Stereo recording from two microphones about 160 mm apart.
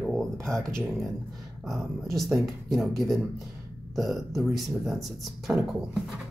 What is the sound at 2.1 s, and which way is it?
Speech, centre (ahead or behind).